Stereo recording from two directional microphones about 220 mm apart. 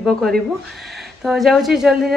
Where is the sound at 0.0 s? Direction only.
Centre (ahead or behind).